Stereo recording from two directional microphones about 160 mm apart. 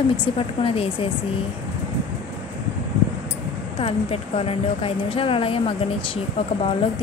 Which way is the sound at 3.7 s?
40° left (ahead or behind).